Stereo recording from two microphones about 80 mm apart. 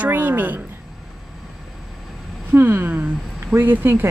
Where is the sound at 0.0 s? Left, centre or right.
Right.